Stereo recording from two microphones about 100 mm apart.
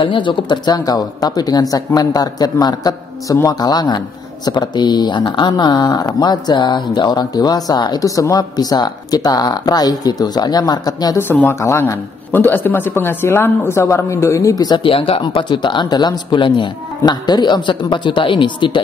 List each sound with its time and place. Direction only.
0.0 s speech: 55° left (ahead or behind)
11.1 s speech: 20° left (ahead or behind); by 14.8 s 40° left (ahead or behind)
14.8 s speech: 65° left (ahead or behind)
15.3 s speech: 50° left (ahead or behind)